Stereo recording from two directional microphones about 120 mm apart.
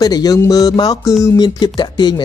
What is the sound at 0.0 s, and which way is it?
Speech, 35° left (ahead or behind).